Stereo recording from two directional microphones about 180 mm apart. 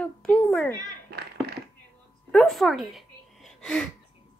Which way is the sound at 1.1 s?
65° right (ahead or behind).